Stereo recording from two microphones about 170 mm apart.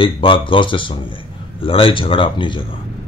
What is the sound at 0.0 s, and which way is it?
Speech, 30° left (ahead or behind).